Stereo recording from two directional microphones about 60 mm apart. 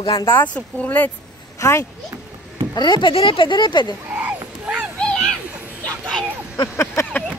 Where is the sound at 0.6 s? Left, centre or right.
Left.